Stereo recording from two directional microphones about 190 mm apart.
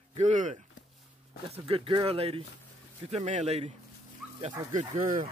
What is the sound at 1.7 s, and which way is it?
Speech, 25° right (ahead or behind).